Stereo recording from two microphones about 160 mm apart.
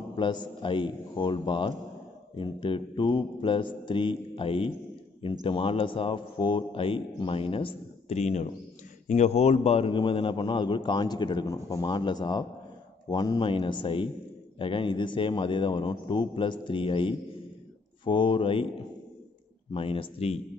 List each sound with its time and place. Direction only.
0.1 s a man's voice: 30° left (ahead or behind)
19.7 s a man's voice: 35° left (ahead or behind)